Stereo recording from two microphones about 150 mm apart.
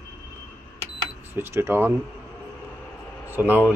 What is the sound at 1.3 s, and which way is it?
Speech, 15° right (ahead or behind).